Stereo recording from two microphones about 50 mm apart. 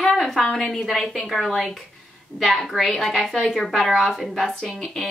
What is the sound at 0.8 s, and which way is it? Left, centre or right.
A woman's voice, centre.